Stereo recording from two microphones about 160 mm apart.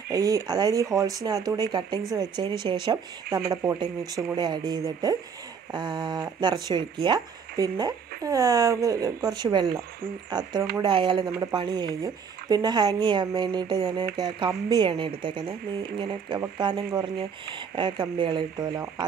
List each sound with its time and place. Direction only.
0.1 s a woman's voice: 20° right (ahead or behind)